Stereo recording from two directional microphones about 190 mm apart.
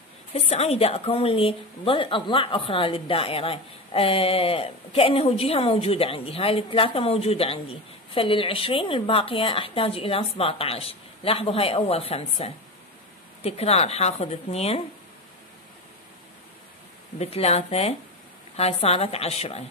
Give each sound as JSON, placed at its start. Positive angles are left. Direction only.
{"t": 0.3, "sound": "a woman's voice", "side_deg": 35}
{"t": 17.2, "sound": "a woman's voice", "side_deg": 35}